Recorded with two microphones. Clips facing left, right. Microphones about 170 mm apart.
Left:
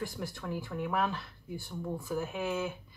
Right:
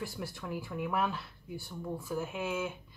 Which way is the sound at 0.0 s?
5° right (ahead or behind).